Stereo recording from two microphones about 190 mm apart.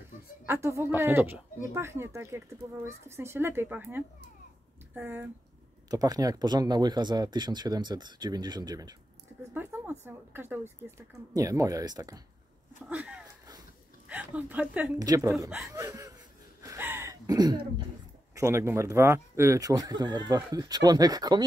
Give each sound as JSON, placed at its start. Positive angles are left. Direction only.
{"t": 0.5, "sound": "speech", "side_deg": -15}
{"t": 5.9, "sound": "speech", "side_deg": -20}
{"t": 9.5, "sound": "speech", "side_deg": -10}
{"t": 12.9, "sound": "a woman's voice", "side_deg": -5}
{"t": 15.0, "sound": "speech", "side_deg": -20}
{"t": 16.6, "sound": "a sound", "side_deg": -10}
{"t": 18.3, "sound": "speech", "side_deg": -15}